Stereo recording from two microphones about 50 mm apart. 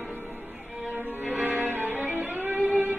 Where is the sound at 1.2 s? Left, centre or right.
Right.